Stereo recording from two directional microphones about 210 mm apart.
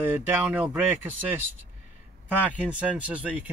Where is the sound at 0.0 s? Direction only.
10° right (ahead or behind).